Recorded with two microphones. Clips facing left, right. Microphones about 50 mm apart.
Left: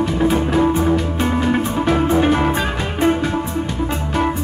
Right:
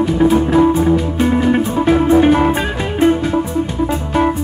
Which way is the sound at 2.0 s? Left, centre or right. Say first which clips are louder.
Right 6 dB; right.